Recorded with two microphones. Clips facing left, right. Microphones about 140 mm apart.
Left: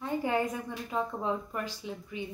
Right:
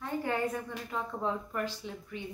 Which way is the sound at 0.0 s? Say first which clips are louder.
Left 2 dB; 15° left (ahead or behind).